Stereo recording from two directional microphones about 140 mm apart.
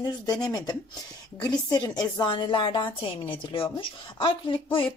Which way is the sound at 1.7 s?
30° left (ahead or behind).